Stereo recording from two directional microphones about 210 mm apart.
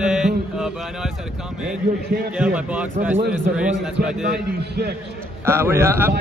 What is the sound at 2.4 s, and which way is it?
Speech, 5° right (ahead or behind).